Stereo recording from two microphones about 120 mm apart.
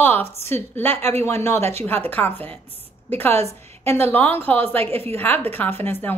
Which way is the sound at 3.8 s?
15° left (ahead or behind).